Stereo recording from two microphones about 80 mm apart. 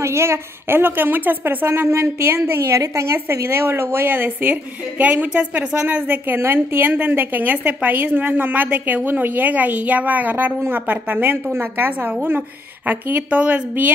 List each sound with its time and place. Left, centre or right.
0.0 s a woman's voice: right
2.6 s a woman's voice: right; by 13.9 s centre